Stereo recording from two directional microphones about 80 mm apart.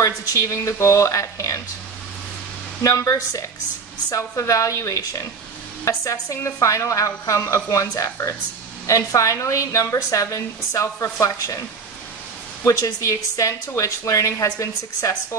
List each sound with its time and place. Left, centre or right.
0.0 s a woman's voice: left
2.8 s a woman's voice: left
12.6 s a woman's voice: left